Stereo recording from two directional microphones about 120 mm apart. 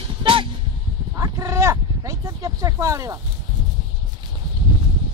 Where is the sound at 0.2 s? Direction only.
45° right (ahead or behind).